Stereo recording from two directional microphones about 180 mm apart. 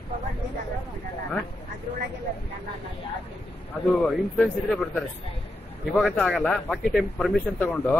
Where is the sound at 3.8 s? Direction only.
Centre (ahead or behind).